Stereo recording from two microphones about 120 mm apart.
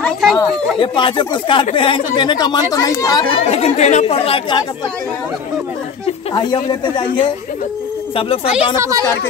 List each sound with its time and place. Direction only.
0.0 s speech: centre (ahead or behind)
0.7 s speech: 45° left (ahead or behind)
3.3 s speech: 60° left (ahead or behind)
6.3 s speech: 40° left (ahead or behind)
8.7 s a woman's voice: 30° right (ahead or behind)